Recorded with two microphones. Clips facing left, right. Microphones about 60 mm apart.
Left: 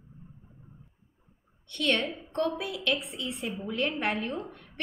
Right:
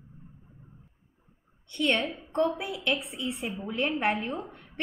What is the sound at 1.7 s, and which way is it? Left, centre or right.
Speech, centre.